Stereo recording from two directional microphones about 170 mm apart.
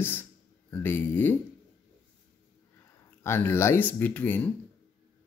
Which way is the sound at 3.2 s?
15° left (ahead or behind).